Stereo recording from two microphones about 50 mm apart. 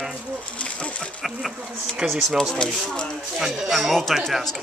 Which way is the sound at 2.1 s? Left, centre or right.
Centre.